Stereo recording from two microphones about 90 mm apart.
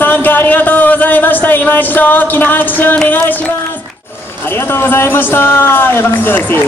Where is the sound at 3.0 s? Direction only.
20° left (ahead or behind).